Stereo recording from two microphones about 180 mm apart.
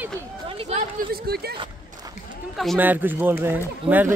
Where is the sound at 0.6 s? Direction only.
35° right (ahead or behind).